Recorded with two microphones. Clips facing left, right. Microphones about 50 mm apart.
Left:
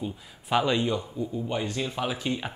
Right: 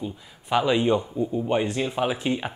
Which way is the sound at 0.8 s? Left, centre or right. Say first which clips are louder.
Right 6 dB; right.